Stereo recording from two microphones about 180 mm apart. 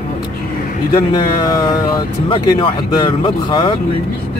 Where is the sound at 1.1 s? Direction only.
25° left (ahead or behind).